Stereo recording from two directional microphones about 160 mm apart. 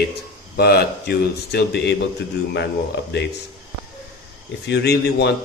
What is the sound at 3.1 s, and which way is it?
Speech, 90° left.